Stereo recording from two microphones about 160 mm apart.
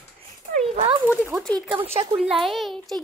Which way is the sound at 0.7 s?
40° right (ahead or behind).